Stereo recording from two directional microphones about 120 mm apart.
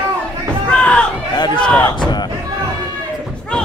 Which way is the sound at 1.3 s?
35° left (ahead or behind).